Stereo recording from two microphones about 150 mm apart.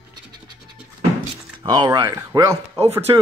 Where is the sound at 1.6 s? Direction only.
25° right (ahead or behind).